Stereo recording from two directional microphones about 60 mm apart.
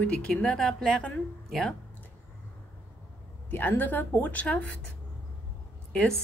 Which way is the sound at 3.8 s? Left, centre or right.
Left.